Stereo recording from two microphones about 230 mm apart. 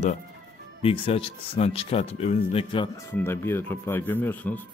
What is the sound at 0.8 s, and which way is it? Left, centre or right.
Speech, left.